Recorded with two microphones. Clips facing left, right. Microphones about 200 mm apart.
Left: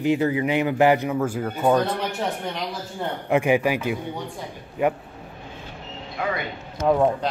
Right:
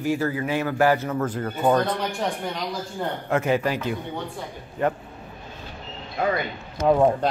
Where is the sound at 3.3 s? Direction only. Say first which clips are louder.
Left 3 dB; 15° left (ahead or behind).